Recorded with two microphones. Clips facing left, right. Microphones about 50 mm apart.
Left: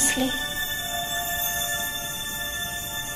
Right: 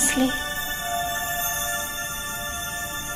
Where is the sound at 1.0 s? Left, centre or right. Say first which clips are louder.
Right 2 dB; right.